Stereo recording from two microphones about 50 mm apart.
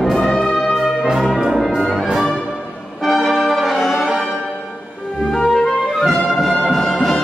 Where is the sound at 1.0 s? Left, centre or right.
Centre.